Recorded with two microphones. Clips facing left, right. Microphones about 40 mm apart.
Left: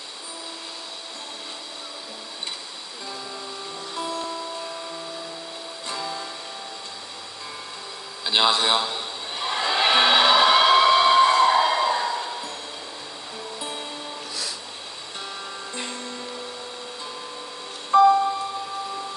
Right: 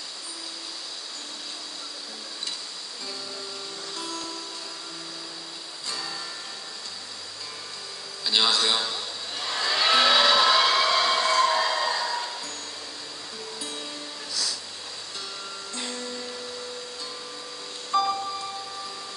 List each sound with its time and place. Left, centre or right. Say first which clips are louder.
3.9 s music: left 7 dB; left
5.9 s music: left 4 dB; left
8.2 s a sound: left 3 dB; left
13.6 s music: left 4 dB; left
15.7 s music: even; left
17.9 s music: left 9 dB; left